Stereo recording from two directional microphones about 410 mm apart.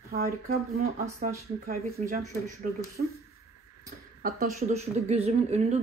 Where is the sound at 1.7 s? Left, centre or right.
Centre.